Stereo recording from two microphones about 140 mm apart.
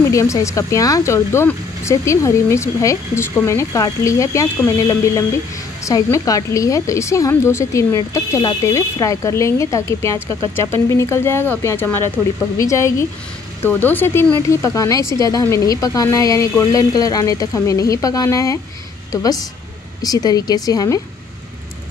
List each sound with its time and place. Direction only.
0.1 s speech: 20° left (ahead or behind)
20.0 s speech: 30° left (ahead or behind)